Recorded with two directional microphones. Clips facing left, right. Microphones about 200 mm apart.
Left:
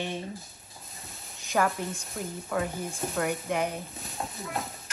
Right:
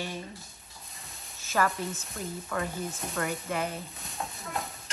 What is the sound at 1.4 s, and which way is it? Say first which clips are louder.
A woman's voice: left 1 dB; 15° left (ahead or behind).